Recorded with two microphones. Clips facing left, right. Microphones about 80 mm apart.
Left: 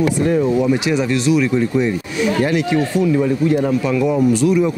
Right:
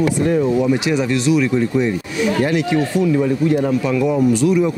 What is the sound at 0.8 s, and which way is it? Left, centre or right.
Speech, centre.